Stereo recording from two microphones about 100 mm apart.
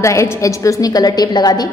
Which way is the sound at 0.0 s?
30° left (ahead or behind).